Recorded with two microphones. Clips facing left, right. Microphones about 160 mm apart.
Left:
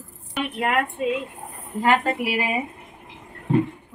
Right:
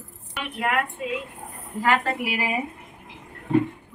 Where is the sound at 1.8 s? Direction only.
20° left (ahead or behind).